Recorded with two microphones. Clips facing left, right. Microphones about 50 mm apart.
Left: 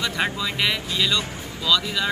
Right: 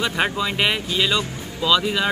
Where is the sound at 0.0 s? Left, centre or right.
Right.